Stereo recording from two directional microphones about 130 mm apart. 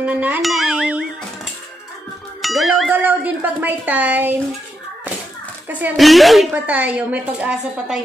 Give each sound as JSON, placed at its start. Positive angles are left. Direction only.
{"t": 0.0, "sound": "a woman's voice", "side_deg": -10}
{"t": 0.4, "sound": "a child's voice", "side_deg": 0}
{"t": 2.4, "sound": "music", "side_deg": 0}
{"t": 2.9, "sound": "a woman's voice", "side_deg": -10}
{"t": 5.9, "sound": "a woman's voice", "side_deg": 0}
{"t": 6.5, "sound": "a woman's voice", "side_deg": -10}